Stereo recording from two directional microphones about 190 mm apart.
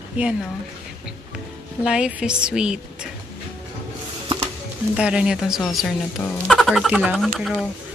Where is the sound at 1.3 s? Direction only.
5° right (ahead or behind).